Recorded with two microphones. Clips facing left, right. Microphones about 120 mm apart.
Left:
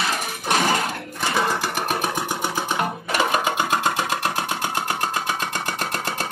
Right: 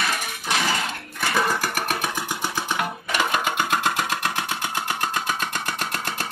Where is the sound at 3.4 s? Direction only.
25° left (ahead or behind).